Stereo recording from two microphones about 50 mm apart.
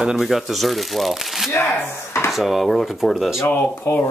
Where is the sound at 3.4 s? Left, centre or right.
Left.